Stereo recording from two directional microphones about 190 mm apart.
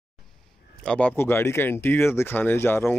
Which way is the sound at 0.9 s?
10° left (ahead or behind).